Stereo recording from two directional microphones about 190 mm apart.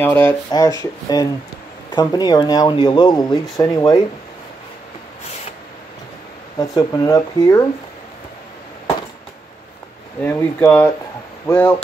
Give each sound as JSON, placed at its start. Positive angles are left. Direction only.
{"t": 0.0, "sound": "speech", "side_deg": 10}
{"t": 6.6, "sound": "speech", "side_deg": 20}
{"t": 10.2, "sound": "speech", "side_deg": 15}